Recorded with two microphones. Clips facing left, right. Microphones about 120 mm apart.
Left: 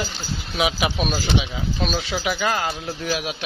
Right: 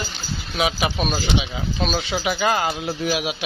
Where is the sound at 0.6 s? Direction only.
5° left (ahead or behind).